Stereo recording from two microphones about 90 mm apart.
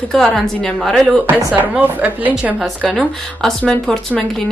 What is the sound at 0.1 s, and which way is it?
A woman's voice, 5° left (ahead or behind).